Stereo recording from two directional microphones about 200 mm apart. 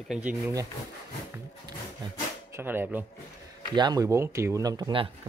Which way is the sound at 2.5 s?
10° right (ahead or behind).